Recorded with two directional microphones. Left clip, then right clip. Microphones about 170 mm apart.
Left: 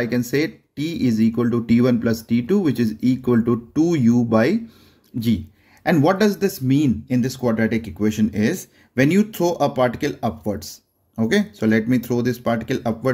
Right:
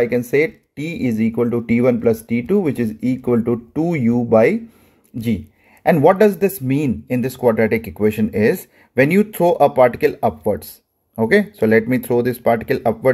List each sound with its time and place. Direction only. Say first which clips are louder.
0.0 s speech: right 5 dB; 15° right (ahead or behind)
5.9 s speech: right 5 dB; 20° right (ahead or behind)